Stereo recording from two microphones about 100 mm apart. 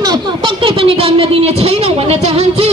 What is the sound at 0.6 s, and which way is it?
Speech, 65° right (ahead or behind).